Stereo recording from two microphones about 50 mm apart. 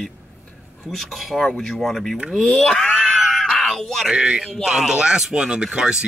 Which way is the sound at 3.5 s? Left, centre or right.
Centre.